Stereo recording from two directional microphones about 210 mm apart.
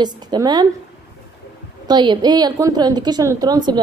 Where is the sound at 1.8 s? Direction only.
20° right (ahead or behind).